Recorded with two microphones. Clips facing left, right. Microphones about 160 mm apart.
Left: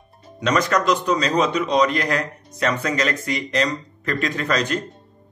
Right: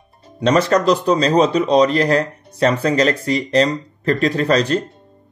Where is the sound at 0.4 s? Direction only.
30° right (ahead or behind).